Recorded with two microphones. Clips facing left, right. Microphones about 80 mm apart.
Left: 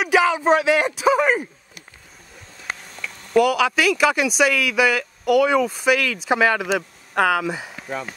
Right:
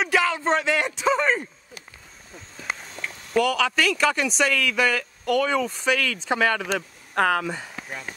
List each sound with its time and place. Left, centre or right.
0.0 s speech: centre
3.3 s speech: centre